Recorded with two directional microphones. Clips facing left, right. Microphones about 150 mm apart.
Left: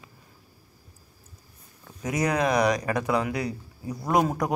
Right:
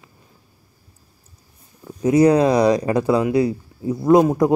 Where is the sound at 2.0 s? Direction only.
30° right (ahead or behind).